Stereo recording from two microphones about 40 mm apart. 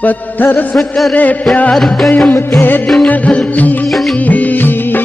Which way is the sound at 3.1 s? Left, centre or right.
Left.